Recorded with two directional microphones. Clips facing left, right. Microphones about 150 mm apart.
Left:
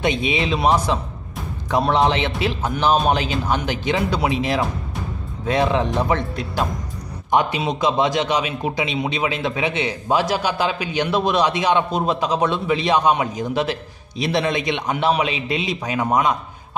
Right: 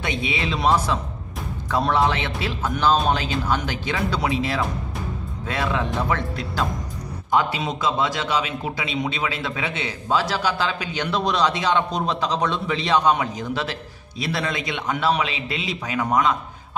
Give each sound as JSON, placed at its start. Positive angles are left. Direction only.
{"t": 0.0, "sound": "a man's voice", "side_deg": 20}